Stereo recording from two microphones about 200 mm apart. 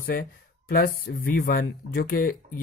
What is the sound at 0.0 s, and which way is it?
Speech, 50° left (ahead or behind).